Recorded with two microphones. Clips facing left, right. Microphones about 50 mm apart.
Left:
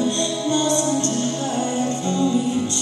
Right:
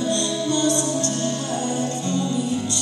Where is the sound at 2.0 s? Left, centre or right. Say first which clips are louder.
Left 5 dB; left.